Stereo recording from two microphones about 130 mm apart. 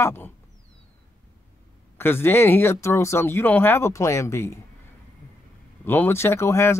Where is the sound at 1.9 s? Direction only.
15° left (ahead or behind).